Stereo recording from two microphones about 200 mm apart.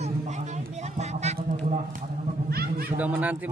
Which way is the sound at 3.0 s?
10° right (ahead or behind).